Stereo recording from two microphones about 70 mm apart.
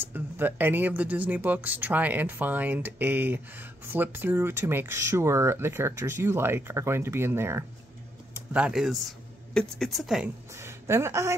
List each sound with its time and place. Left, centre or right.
0.1 s speech: right
9.5 s speech: centre
9.8 s a woman's voice: centre
10.5 s a woman's voice: right